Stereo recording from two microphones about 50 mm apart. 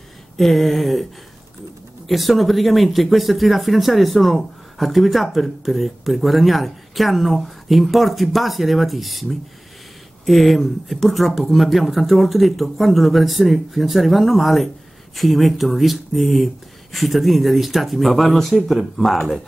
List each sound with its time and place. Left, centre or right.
0.4 s speech: centre
2.0 s speech: centre